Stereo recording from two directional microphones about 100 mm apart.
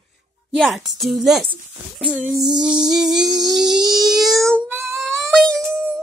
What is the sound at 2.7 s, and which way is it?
Music, 40° right (ahead or behind).